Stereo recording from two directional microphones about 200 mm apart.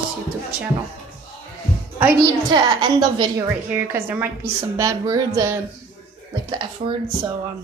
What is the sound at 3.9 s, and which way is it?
Speech, 10° right (ahead or behind).